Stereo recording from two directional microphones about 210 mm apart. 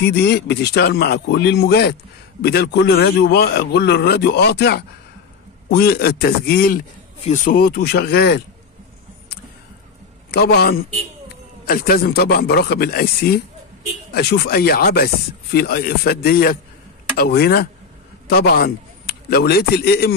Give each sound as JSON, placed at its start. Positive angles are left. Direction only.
{"t": 0.0, "sound": "speech", "side_deg": 50}
{"t": 10.3, "sound": "a man's voice", "side_deg": 50}